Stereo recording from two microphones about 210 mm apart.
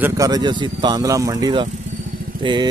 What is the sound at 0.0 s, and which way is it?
Speech, 15° right (ahead or behind).